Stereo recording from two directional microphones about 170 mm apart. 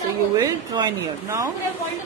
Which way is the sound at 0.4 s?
20° right (ahead or behind).